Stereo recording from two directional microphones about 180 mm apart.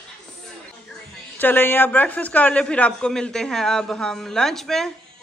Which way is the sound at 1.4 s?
10° left (ahead or behind).